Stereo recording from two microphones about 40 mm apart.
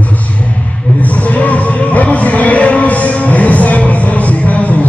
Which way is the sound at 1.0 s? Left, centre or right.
Left.